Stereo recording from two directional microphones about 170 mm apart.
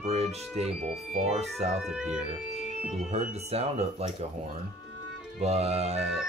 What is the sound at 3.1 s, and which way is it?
Speech, 40° right (ahead or behind).